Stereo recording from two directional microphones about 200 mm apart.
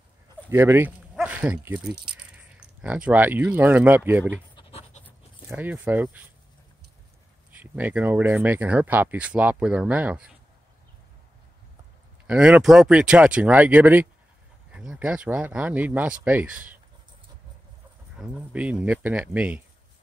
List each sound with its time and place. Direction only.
0.5 s speech: 10° right (ahead or behind)
4.6 s pant: 30° left (ahead or behind)
5.5 s speech: 10° right (ahead or behind)
7.5 s speech: 10° right (ahead or behind)
12.3 s speech: 5° right (ahead or behind)
18.2 s speech: centre (ahead or behind)